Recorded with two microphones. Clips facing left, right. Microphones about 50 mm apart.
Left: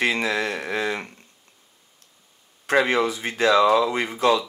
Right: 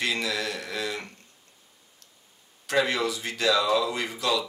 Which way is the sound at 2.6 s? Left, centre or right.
Left.